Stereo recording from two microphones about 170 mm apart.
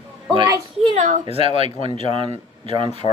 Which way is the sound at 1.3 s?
35° right (ahead or behind).